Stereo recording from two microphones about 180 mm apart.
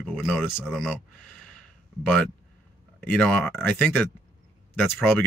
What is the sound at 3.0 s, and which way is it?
Speech, 5° left (ahead or behind).